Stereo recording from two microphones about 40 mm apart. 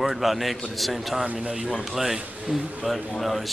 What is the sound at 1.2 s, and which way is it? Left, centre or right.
Speech, right.